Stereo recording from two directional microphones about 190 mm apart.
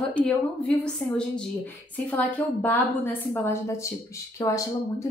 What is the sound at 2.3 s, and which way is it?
A woman's voice, 10° left (ahead or behind).